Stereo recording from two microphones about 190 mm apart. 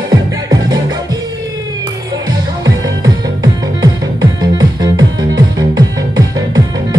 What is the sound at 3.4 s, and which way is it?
Music, 20° right (ahead or behind).